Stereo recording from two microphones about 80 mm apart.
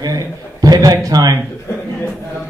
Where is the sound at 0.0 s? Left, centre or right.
Right.